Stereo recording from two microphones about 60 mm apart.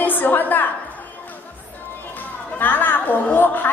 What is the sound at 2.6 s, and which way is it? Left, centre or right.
A woman's voice, left.